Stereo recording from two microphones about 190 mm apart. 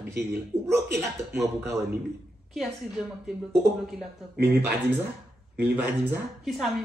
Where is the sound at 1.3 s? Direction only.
15° right (ahead or behind).